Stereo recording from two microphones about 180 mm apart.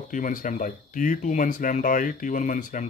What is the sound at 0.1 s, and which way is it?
Speech, 45° left (ahead or behind).